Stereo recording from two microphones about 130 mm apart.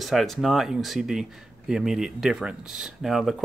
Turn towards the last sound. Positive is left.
turn(degrees=0)  # may be behind; listen again after turning